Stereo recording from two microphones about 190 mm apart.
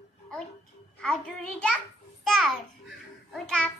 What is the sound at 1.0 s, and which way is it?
Music, 5° left (ahead or behind).